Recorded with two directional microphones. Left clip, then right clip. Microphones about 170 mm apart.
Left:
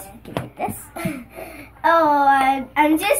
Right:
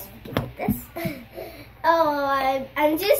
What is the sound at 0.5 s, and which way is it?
Speech, 20° right (ahead or behind).